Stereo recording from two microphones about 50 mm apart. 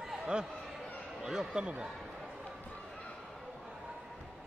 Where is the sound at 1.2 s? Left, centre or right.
Centre.